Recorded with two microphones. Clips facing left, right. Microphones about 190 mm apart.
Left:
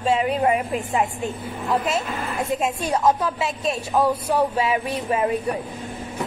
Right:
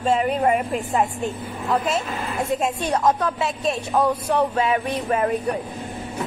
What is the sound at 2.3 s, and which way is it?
Speech, 25° right (ahead or behind).